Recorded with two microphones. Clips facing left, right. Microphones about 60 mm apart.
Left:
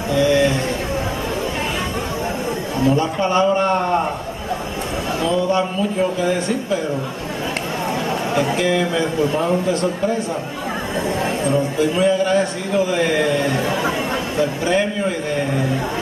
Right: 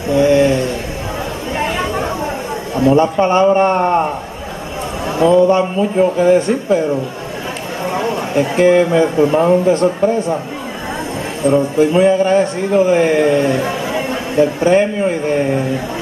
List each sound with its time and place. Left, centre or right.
2.8 s speech: right
5.2 s speech: right
8.4 s speech: right
11.4 s speech: right
14.6 s speech: right